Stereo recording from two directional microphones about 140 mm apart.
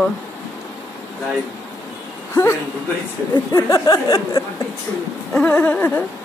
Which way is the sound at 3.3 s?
25° left (ahead or behind).